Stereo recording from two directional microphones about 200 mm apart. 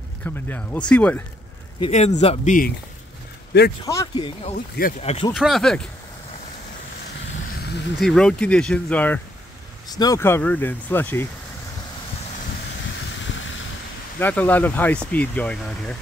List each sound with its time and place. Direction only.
0.2 s speech: 10° left (ahead or behind)
1.8 s speech: 30° left (ahead or behind)
3.8 s speech: 20° left (ahead or behind)
4.6 s speech: 45° left (ahead or behind)
5.0 s speech: 30° left (ahead or behind)
5.3 s speech: centre (ahead or behind)
8.0 s speech: 5° left (ahead or behind)
9.8 s speech: 20° left (ahead or behind)
13.3 s vehicle: 70° left (ahead or behind)
14.2 s speech: 10° left (ahead or behind)